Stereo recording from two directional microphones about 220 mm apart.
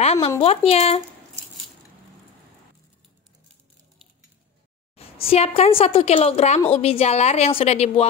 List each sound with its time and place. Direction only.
0.0 s a sound: 30° left (ahead or behind)
0.4 s a woman's voice: 25° left (ahead or behind)
4.9 s a woman's voice: 25° left (ahead or behind)